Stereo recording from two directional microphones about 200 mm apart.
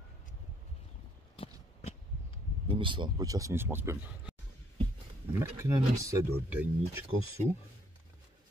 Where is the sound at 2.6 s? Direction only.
25° right (ahead or behind).